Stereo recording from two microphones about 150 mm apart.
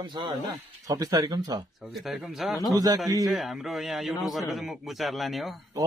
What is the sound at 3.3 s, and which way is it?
A man's voice, centre (ahead or behind).